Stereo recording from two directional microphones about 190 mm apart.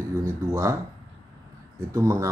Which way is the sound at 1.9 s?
15° right (ahead or behind).